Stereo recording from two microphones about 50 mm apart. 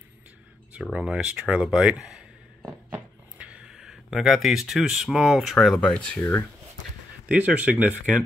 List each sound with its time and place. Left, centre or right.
0.9 s speech: right
3.3 s a sound: right
3.6 s speech: centre
5.8 s speech: left
7.2 s speech: right